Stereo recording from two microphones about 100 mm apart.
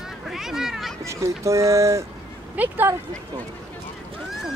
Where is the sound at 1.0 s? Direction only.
30° right (ahead or behind).